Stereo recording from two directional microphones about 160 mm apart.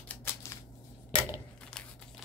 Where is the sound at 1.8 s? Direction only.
5° left (ahead or behind).